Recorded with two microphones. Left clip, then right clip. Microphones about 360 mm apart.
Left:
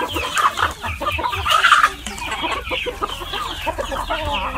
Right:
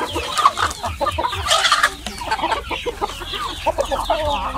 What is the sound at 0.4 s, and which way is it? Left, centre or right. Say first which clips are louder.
Chicken: right 2 dB; centre.